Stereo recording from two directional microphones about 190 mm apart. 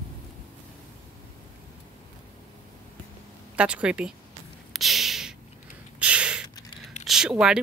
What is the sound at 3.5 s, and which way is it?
Speech, 5° right (ahead or behind).